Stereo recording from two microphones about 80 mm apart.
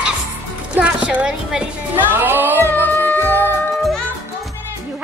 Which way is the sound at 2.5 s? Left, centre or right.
Left.